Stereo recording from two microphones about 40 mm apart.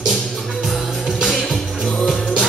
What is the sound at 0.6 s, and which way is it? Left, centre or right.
Music, centre.